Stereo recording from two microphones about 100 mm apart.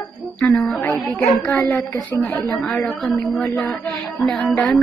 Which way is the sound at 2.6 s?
5° left (ahead or behind).